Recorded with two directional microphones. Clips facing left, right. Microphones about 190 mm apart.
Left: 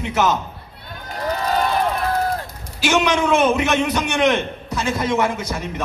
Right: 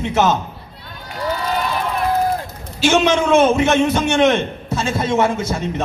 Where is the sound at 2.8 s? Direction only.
25° right (ahead or behind).